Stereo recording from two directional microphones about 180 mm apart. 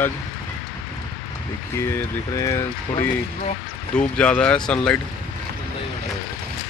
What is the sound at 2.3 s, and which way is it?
Speech, 15° left (ahead or behind).